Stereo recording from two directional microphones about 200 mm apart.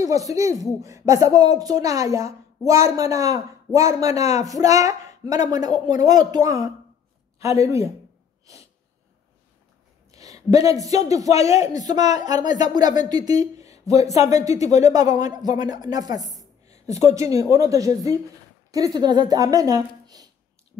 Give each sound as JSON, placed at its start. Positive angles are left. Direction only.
{"t": 0.0, "sound": "a woman's voice", "side_deg": -15}
{"t": 4.2, "sound": "speech", "side_deg": 35}
{"t": 4.5, "sound": "a woman's voice", "side_deg": -15}
{"t": 10.1, "sound": "a sound", "side_deg": -15}
{"t": 10.7, "sound": "a woman's voice", "side_deg": -15}